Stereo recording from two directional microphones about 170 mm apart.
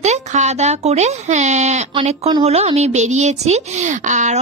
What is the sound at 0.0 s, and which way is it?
A woman's voice, 40° right (ahead or behind).